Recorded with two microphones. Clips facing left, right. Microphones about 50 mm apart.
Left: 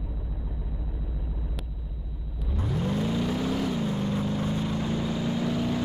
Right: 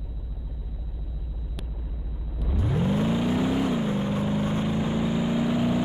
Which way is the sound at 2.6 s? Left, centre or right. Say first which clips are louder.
Right 3 dB; right.